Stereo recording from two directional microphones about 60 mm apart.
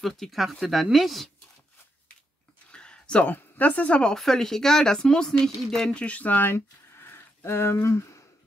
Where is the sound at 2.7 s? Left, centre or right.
Centre.